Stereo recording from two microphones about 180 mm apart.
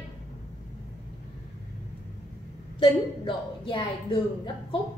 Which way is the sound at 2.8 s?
25° left (ahead or behind).